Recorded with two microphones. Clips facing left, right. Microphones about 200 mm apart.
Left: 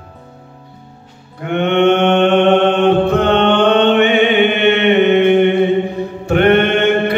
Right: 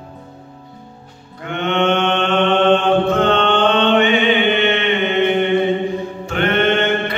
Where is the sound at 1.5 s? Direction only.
60° left (ahead or behind).